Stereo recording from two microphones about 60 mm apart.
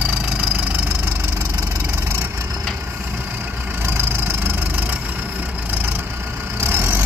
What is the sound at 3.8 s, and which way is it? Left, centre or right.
Vehicle, right.